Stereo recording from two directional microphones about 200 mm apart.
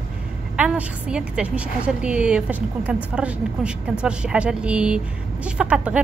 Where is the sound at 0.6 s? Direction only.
5° right (ahead or behind).